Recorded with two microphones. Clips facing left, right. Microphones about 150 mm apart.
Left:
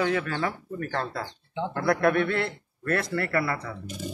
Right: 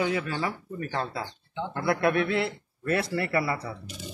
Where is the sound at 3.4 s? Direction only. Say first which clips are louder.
Even; 25° right (ahead or behind).